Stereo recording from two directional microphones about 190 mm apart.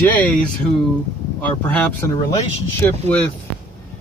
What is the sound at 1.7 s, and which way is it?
Speech, 5° left (ahead or behind).